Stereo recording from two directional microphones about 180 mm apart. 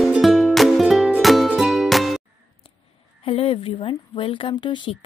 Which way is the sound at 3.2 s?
30° left (ahead or behind).